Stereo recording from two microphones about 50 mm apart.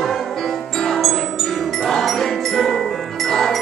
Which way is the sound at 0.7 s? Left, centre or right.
Centre.